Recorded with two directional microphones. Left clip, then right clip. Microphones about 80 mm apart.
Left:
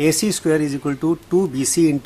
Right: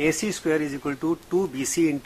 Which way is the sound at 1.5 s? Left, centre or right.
Left.